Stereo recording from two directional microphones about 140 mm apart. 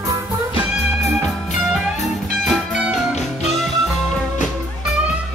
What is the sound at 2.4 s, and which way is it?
Music, centre (ahead or behind).